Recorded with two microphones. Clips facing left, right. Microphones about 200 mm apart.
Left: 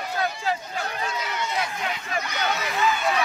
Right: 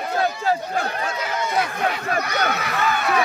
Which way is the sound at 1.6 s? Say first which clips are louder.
Right 6 dB; 60° right (ahead or behind).